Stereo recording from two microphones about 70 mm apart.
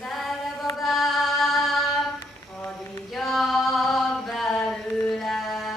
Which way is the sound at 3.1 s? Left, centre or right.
Centre.